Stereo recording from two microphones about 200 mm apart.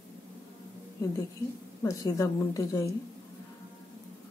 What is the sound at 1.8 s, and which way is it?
A woman's voice, 15° left (ahead or behind).